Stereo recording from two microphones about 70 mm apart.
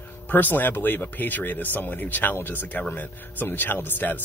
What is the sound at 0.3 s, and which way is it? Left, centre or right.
Speech, left.